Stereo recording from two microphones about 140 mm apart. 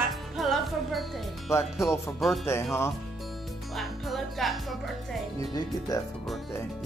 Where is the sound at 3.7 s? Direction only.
Centre (ahead or behind).